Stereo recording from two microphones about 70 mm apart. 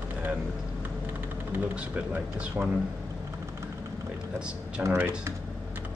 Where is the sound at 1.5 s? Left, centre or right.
Right.